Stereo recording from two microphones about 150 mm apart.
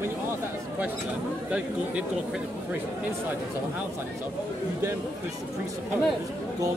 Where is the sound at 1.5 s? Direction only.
10° right (ahead or behind).